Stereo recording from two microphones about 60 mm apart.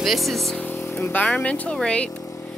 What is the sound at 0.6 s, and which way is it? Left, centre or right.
Speech, left.